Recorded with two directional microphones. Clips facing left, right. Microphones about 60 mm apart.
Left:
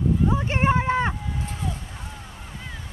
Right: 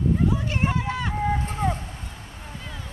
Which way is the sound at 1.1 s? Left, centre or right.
Right.